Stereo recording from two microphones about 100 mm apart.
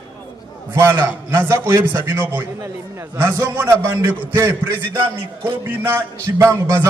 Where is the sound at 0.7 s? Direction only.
25° right (ahead or behind).